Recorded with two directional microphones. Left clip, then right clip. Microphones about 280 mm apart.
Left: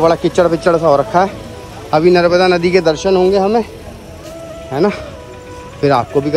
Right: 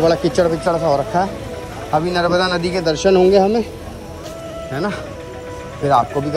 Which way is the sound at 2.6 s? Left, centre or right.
Centre.